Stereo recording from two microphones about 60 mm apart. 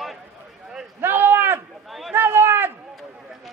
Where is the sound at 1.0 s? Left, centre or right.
Right.